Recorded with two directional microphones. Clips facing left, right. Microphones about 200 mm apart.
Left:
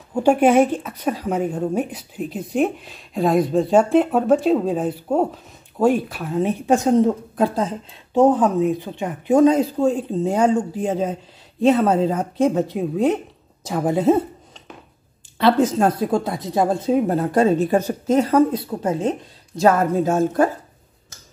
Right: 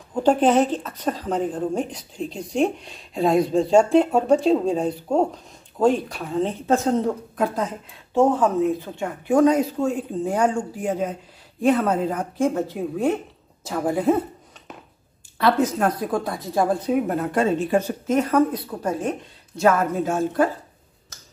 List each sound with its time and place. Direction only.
0.1 s speech: 10° left (ahead or behind)
7.3 s speech: 30° left (ahead or behind)
8.1 s speech: 20° left (ahead or behind)
15.3 s speech: 30° left (ahead or behind)
19.6 s a woman's voice: 35° left (ahead or behind)